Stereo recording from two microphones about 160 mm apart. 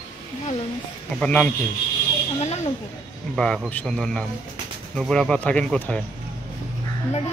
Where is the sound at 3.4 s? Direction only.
5° left (ahead or behind).